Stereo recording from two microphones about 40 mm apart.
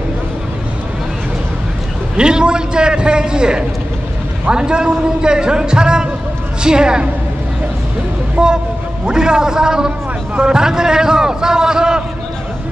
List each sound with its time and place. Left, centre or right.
2.1 s a man's voice: right
8.4 s a man's voice: right